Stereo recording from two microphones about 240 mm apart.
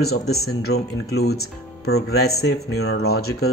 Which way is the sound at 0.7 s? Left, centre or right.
Left.